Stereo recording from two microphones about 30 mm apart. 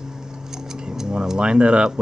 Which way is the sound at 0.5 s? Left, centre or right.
Right.